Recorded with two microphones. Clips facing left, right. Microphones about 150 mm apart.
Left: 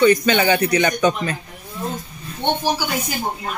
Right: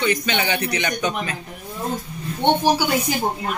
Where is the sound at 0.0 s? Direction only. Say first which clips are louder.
Left 7 dB; 45° left (ahead or behind).